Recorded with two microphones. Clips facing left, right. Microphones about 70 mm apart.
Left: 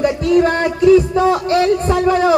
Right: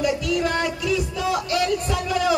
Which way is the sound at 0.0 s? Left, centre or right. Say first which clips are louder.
Left 9 dB; left.